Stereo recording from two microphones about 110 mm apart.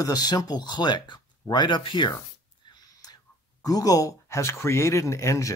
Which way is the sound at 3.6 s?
35° left (ahead or behind).